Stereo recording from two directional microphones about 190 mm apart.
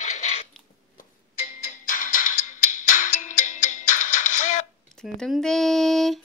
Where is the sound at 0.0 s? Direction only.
40° left (ahead or behind).